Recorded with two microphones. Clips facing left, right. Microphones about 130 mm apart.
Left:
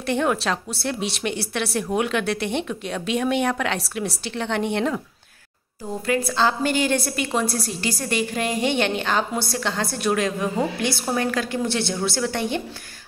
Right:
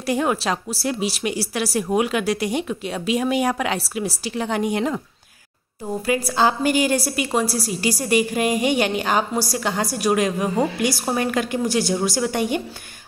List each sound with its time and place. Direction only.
0.0 s a woman's voice: 5° right (ahead or behind)
6.0 s a woman's voice: 10° right (ahead or behind)